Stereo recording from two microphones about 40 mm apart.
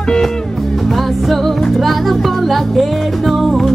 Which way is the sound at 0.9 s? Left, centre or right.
Centre.